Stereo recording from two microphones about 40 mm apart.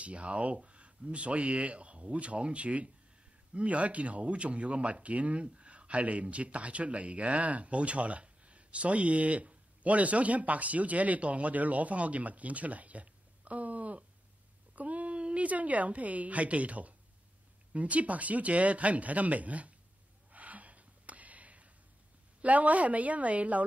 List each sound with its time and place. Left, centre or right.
0.0 s speech: right
20.3 s a sound: right
22.4 s speech: right